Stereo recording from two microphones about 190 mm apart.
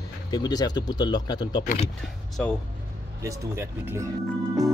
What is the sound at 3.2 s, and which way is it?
Speech, 15° right (ahead or behind).